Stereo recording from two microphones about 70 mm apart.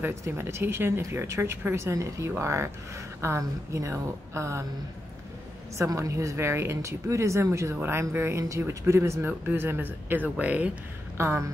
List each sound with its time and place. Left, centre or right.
0.0 s speech: right
5.8 s speech: right
7.7 s speech: right
9.2 s speech: right
11.1 s speech: right